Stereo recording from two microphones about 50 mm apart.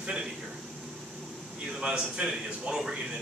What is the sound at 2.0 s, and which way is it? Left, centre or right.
Speech, centre.